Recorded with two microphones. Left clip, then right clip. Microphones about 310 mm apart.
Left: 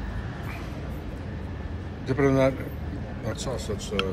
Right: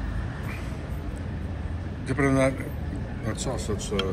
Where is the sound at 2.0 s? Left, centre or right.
Centre.